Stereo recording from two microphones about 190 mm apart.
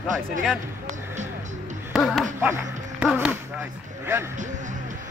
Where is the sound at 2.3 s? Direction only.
10° right (ahead or behind).